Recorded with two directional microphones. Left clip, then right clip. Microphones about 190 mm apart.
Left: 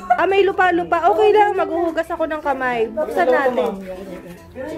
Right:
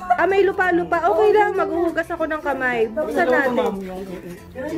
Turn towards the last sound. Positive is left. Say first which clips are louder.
# left 2 dB
turn(degrees=5)  # may be behind; listen again after turning